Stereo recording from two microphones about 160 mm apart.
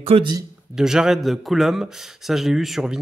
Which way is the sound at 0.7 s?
5° right (ahead or behind).